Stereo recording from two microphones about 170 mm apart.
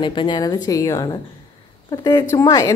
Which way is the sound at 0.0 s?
30° left (ahead or behind).